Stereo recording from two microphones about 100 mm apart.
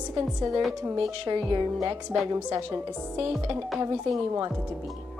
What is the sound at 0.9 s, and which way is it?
Speech, 55° right (ahead or behind).